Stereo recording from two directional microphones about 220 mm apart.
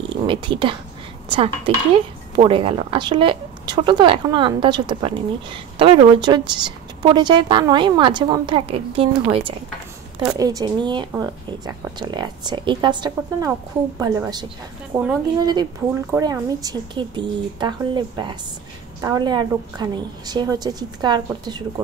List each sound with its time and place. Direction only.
0.3 s a woman's voice: 20° right (ahead or behind)